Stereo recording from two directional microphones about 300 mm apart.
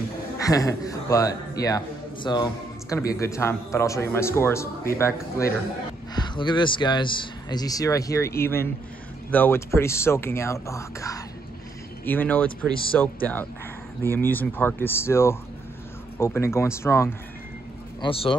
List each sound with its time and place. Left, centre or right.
0.4 s a man's voice: centre